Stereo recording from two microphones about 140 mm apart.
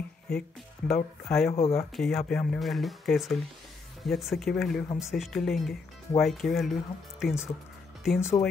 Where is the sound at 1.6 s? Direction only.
Centre (ahead or behind).